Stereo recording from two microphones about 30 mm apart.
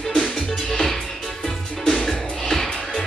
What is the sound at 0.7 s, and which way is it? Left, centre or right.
Music, centre.